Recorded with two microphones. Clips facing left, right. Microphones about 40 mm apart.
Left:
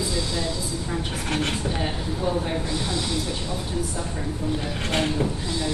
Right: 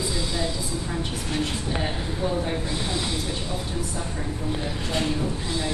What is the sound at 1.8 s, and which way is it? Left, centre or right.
Speech, centre.